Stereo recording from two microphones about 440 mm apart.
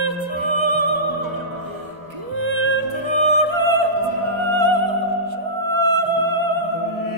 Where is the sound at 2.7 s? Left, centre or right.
Right.